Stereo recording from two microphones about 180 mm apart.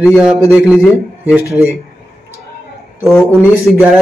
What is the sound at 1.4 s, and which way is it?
Speech, 15° left (ahead or behind).